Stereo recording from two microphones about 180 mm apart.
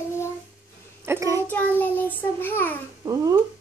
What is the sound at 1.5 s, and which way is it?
Child singing, 10° left (ahead or behind).